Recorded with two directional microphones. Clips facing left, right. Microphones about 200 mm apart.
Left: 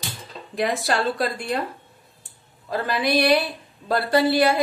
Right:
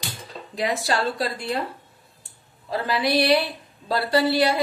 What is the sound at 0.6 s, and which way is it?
A woman's voice, 50° left (ahead or behind).